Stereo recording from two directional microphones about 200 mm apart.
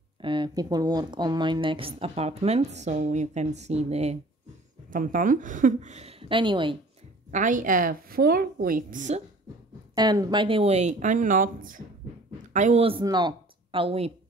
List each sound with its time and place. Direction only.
0.2 s a woman's voice: 25° right (ahead or behind)
7.2 s a woman's voice: 40° right (ahead or behind)
9.9 s speech: 20° right (ahead or behind)